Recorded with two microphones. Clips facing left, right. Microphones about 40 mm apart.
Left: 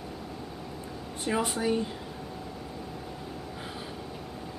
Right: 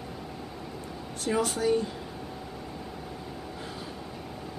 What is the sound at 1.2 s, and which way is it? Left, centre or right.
Speech, centre.